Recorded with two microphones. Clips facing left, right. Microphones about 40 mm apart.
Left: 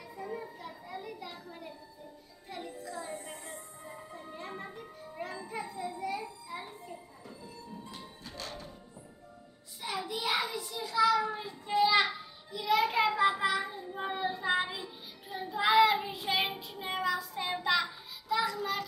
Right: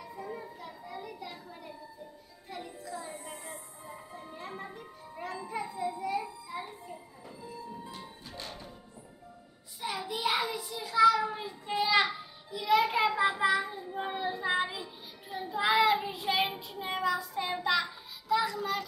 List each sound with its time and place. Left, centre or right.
0.0 s a sound: centre
2.8 s music: centre
8.4 s music: centre
9.8 s child singing: centre